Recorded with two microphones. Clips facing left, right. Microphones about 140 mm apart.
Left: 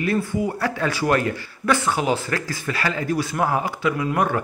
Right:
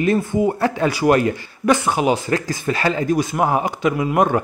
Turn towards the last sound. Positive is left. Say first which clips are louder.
# right 4 dB
turn(degrees=-25)  # may be behind; listen again after turning